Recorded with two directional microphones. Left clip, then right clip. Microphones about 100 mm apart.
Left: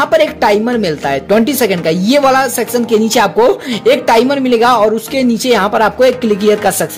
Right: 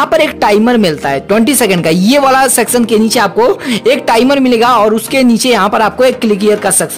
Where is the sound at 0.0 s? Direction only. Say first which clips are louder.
Right 1 dB; 35° right (ahead or behind).